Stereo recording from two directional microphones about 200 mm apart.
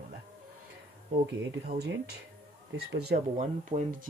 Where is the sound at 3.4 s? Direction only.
40° right (ahead or behind).